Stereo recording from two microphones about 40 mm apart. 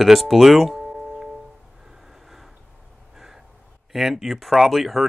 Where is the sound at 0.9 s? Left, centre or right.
Centre.